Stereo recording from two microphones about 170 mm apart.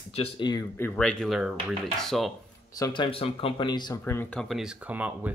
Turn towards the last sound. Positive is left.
turn(degrees=-10)  # may be behind; listen again after turning